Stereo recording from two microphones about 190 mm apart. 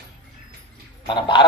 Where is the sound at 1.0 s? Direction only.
25° left (ahead or behind).